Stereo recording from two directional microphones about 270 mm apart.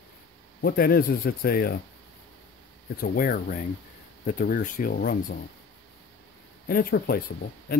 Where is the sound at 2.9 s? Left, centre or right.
Left.